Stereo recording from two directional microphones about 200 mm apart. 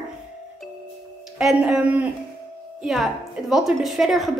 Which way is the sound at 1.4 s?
5° right (ahead or behind).